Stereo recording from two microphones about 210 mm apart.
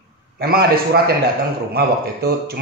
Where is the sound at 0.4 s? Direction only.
45° right (ahead or behind).